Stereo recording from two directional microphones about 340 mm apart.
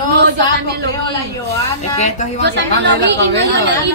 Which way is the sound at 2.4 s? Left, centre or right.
Right.